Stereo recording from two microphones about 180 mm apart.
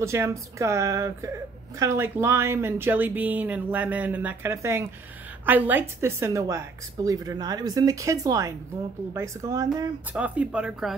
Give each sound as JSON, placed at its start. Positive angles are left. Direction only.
{"t": 0.0, "sound": "a woman's voice", "side_deg": -15}
{"t": 10.1, "sound": "speech", "side_deg": -10}